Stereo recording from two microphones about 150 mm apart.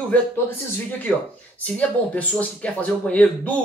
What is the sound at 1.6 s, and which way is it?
Speech, 10° left (ahead or behind).